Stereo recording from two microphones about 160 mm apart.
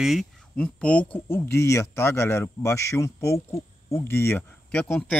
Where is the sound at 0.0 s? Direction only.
Centre (ahead or behind).